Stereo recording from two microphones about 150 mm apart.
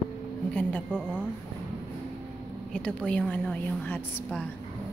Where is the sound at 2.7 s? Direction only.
5° left (ahead or behind).